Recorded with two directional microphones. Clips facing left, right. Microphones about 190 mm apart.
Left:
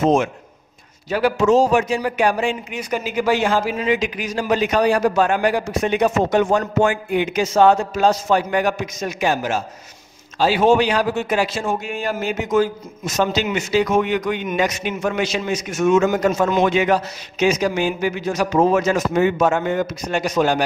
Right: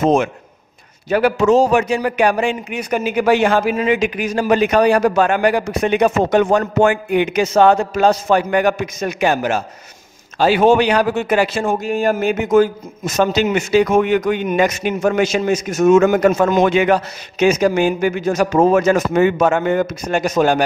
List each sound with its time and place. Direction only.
0.0 s a man's voice: 55° right (ahead or behind)
11.8 s a man's voice: 45° right (ahead or behind)
16.0 s a man's voice: 55° right (ahead or behind)